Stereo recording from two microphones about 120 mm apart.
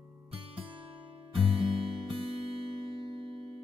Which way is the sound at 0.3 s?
45° right (ahead or behind).